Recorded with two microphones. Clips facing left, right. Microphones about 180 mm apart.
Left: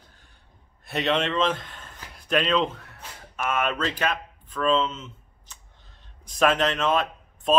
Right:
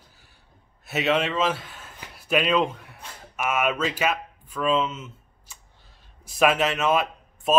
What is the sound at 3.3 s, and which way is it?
A man's voice, 10° right (ahead or behind).